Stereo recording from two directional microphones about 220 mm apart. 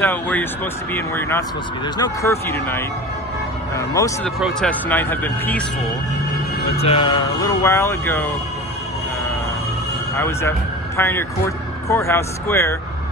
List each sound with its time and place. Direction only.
0.0 s speech: 10° left (ahead or behind)
4.4 s speech: centre (ahead or behind)
6.8 s speech: 25° left (ahead or behind)
7.4 s speech: 10° left (ahead or behind)
10.1 s speech: 10° left (ahead or behind)